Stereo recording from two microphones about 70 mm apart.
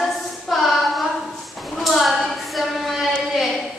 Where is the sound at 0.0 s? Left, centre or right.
Centre.